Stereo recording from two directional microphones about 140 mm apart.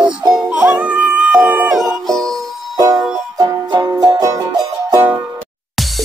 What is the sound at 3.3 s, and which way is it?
Music, 30° right (ahead or behind).